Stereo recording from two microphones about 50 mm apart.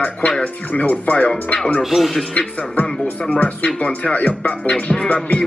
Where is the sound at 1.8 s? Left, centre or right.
Centre.